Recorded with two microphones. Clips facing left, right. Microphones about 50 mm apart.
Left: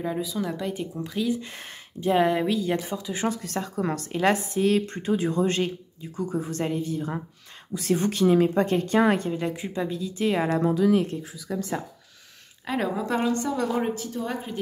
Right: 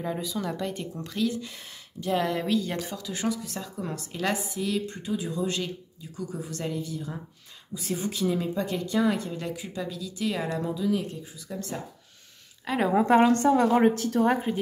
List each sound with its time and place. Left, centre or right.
0.0 s speech: centre
1.4 s speech: left
2.0 s speech: left
2.4 s speech: centre
3.4 s a woman's voice: left
4.1 s a woman's voice: left
7.7 s a woman's voice: left
9.3 s speech: left
10.6 s a woman's voice: left
12.6 s speech: centre
12.9 s a woman's voice: right
13.9 s speech: right
14.2 s a woman's voice: right